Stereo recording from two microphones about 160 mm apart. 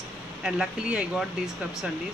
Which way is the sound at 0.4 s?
5° right (ahead or behind).